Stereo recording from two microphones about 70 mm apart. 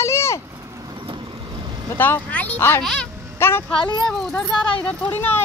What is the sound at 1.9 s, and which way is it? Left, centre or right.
Speech, left.